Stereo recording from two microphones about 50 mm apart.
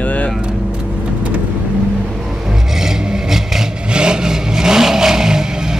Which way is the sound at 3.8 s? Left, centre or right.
Centre.